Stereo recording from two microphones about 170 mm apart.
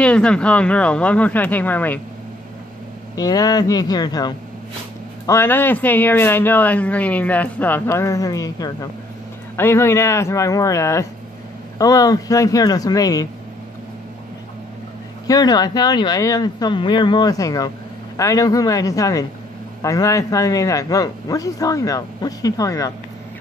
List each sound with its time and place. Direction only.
0.0 s speech: 5° left (ahead or behind)
3.2 s a man's voice: 20° left (ahead or behind)
15.2 s a man's voice: 20° left (ahead or behind)